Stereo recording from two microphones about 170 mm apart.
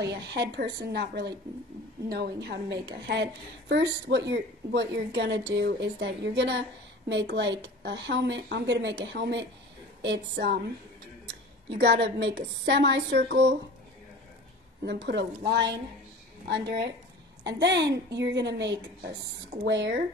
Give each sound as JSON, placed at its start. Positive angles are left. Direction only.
{"t": 0.0, "sound": "a woman's voice", "side_deg": -80}
{"t": 3.1, "sound": "a woman's voice", "side_deg": -90}
{"t": 11.8, "sound": "a woman's voice", "side_deg": -80}
{"t": 13.2, "sound": "a woman's voice", "side_deg": -70}
{"t": 14.8, "sound": "a woman's voice", "side_deg": -90}
{"t": 17.5, "sound": "a woman's voice", "side_deg": -90}